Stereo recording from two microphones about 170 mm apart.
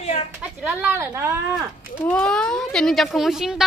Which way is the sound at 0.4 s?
5° right (ahead or behind).